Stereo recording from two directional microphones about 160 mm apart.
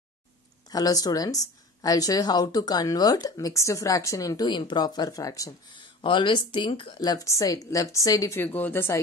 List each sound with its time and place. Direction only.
0.7 s a woman's voice: 25° left (ahead or behind)
5.9 s a woman's voice: 30° left (ahead or behind); by 9.0 s 15° left (ahead or behind)